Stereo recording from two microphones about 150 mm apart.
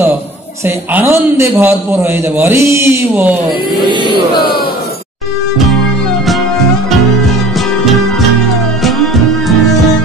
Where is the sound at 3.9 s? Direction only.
30° left (ahead or behind).